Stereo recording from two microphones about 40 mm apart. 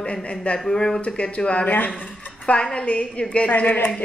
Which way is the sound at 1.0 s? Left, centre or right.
Left.